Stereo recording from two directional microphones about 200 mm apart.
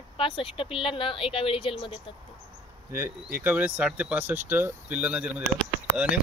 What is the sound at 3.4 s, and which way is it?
Speech, 10° right (ahead or behind).